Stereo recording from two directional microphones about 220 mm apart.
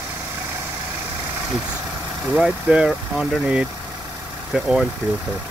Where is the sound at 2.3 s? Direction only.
5° right (ahead or behind).